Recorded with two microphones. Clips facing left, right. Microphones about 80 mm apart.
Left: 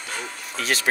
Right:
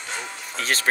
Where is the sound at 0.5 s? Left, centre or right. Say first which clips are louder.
Even; right.